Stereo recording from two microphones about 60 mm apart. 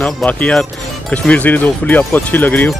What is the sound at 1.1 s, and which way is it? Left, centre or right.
Speech, left.